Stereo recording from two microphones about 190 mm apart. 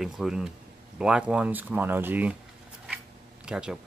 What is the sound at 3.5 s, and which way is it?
Speech, 5° right (ahead or behind).